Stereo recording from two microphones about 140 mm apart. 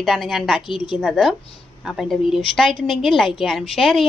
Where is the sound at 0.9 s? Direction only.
Centre (ahead or behind).